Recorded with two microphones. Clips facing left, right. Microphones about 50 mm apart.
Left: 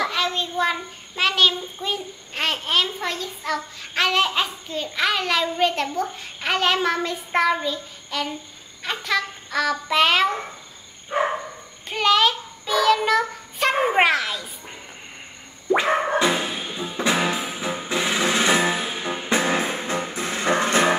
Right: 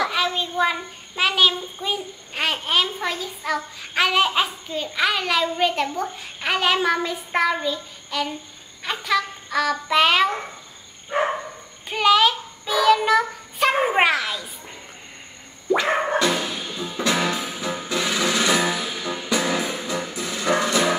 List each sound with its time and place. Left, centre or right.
0.0 s a child's voice: centre
11.9 s a child's voice: centre
15.9 s a child's voice: centre
16.2 s music: left